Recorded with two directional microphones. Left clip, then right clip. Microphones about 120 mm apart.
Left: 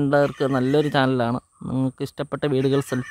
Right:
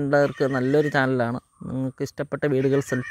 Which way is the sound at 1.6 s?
35° left (ahead or behind).